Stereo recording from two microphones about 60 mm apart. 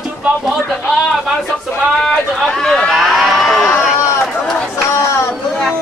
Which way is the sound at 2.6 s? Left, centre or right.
Centre.